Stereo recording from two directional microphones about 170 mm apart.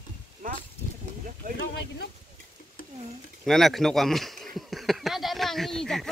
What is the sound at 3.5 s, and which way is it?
Speech, centre (ahead or behind).